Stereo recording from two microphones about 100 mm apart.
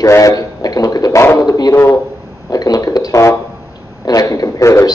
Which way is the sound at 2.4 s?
40° left (ahead or behind).